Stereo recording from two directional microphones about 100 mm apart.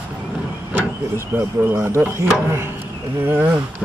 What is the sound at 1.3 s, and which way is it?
Speech, 20° right (ahead or behind).